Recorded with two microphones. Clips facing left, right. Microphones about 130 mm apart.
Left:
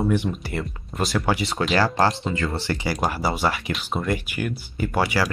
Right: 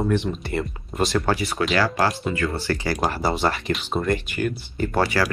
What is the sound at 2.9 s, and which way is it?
Speech, centre (ahead or behind).